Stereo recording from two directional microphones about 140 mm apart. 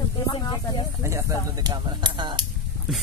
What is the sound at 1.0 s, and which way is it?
Speech, 25° right (ahead or behind).